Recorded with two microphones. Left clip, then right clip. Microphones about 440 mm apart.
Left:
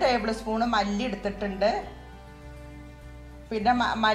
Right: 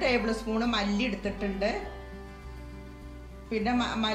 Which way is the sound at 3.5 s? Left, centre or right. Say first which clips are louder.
Left 5 dB; centre.